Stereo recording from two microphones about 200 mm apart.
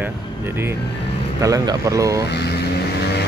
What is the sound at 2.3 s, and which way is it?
Vehicle, 55° left (ahead or behind).